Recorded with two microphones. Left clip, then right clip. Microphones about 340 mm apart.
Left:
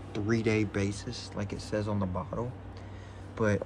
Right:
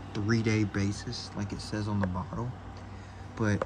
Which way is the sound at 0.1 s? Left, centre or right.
Centre.